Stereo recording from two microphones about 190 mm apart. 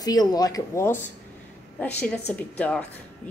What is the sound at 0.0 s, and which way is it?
Speech, 20° left (ahead or behind).